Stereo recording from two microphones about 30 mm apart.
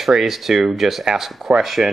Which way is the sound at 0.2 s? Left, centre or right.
Centre.